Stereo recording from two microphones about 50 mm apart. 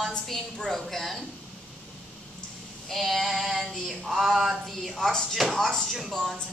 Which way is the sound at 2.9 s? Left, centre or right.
Centre.